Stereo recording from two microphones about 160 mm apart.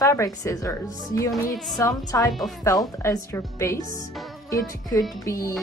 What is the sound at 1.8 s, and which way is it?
A woman's voice, 20° left (ahead or behind).